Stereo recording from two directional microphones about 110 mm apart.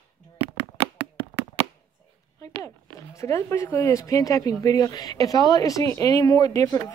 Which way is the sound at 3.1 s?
30° left (ahead or behind).